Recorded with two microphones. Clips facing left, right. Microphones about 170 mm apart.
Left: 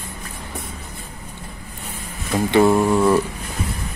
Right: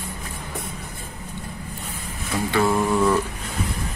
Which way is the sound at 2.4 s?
20° left (ahead or behind).